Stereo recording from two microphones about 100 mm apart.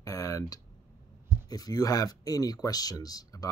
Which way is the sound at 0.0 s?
35° left (ahead or behind).